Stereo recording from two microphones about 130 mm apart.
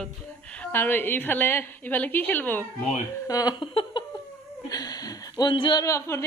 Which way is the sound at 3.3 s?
30° left (ahead or behind).